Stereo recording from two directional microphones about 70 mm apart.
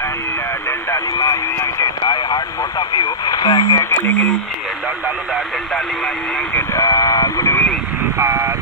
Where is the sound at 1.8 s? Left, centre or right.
Left.